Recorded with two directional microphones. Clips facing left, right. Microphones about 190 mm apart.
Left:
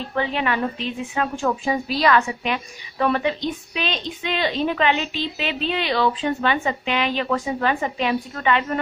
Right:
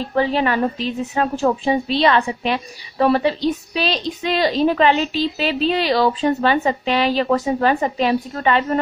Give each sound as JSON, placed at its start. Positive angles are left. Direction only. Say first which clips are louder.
{"t": 0.1, "sound": "a woman's voice", "louder": "right 5 dB", "side_deg": -35}